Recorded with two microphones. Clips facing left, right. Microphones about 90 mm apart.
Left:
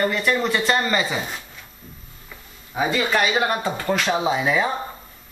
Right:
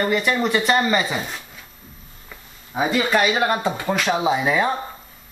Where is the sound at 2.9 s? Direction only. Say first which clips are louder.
Right 2 dB; 5° right (ahead or behind).